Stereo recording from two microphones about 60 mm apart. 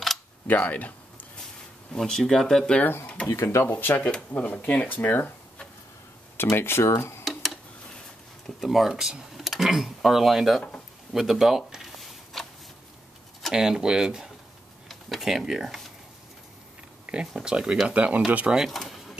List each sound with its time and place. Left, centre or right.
0.5 s speech: left
2.0 s speech: centre
3.4 s speech: left
6.3 s speech: left
8.5 s speech: centre
11.1 s a sound: centre
13.5 s speech: centre
14.9 s a sound: centre
17.0 s a sound: centre
17.3 s speech: centre
17.8 s speech: right
18.6 s speech: centre